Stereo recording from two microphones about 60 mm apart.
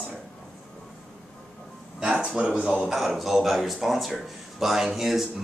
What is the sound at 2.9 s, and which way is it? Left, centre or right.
Speech, centre.